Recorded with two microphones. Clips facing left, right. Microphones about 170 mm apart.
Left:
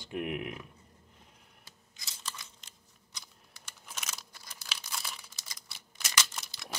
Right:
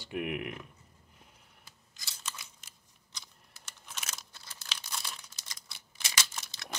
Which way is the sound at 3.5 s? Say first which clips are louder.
Even; 5° left (ahead or behind).